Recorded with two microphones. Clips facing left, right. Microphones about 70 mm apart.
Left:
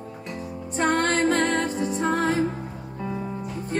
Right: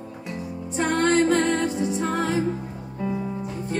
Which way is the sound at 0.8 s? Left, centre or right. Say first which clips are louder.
Right 2 dB; left.